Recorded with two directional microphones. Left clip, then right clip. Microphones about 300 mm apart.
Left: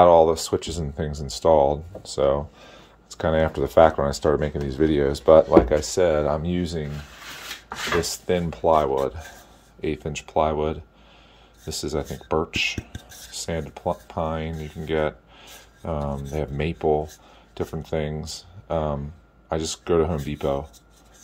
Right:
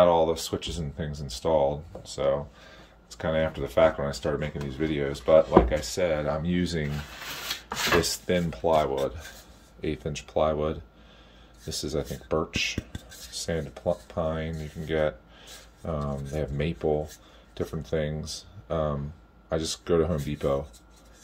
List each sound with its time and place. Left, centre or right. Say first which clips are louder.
0.0 s speech: left 6 dB; centre
8.0 s speech: left 2 dB; centre